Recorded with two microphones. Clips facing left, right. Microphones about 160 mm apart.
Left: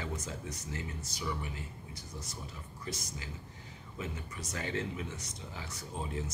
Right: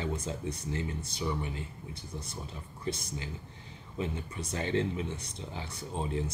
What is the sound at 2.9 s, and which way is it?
Speech, 25° right (ahead or behind).